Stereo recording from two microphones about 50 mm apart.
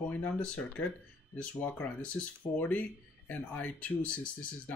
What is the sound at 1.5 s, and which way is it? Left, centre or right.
Speech, left.